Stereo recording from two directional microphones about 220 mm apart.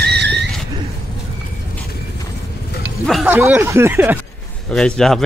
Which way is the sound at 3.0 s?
Centre (ahead or behind).